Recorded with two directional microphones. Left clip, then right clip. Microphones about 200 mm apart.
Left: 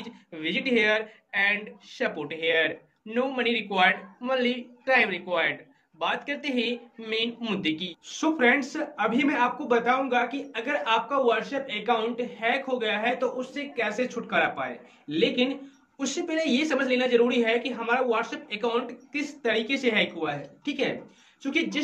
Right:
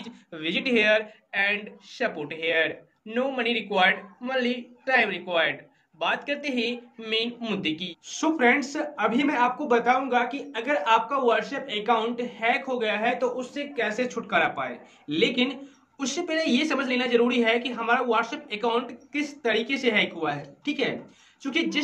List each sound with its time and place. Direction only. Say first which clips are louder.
0.0 s speech: right 1 dB; 15° right (ahead or behind)